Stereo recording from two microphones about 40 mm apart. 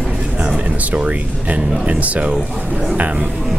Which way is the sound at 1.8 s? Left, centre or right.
Right.